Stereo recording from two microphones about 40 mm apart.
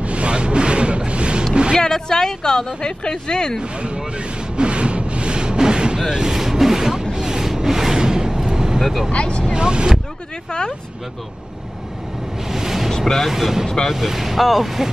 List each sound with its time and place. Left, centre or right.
0.0 s a sound: right
1.5 s music: right
1.8 s a woman's voice: centre
3.7 s vehicle: right
6.1 s rub: centre
9.1 s a woman's voice: left
9.5 s speech: right
12.4 s a sound: centre
12.9 s speech: centre
13.3 s speech: centre